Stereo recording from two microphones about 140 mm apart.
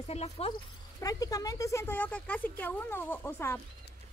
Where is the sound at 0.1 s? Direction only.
45° left (ahead or behind).